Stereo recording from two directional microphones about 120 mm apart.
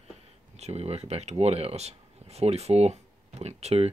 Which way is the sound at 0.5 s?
60° right (ahead or behind).